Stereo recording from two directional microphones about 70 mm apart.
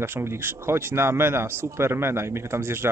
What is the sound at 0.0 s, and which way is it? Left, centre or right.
Speech, right.